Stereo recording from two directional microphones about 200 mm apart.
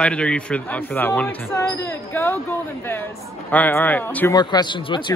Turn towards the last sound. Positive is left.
turn(degrees=25)  # may be behind; listen again after turning